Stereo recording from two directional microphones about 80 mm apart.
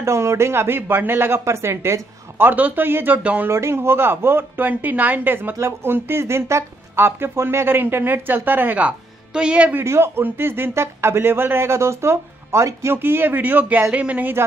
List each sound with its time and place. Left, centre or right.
0.0 s speech: right; by 3.4 s centre
3.4 s speech: right; by 9.8 s centre
9.8 s speech: right